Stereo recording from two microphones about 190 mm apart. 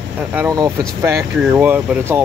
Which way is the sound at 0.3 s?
10° right (ahead or behind).